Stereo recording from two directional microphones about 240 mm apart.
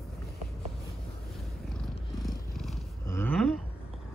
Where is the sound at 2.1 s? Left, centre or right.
Centre.